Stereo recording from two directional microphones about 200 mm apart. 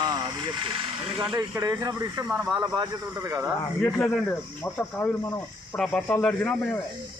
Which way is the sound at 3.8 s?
5° left (ahead or behind).